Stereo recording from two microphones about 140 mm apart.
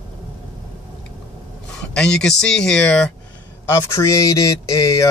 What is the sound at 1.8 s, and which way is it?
Speech, 5° left (ahead or behind).